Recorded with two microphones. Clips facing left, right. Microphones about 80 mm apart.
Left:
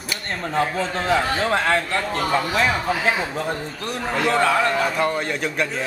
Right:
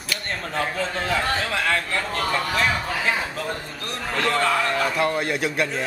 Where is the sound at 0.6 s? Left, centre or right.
Centre.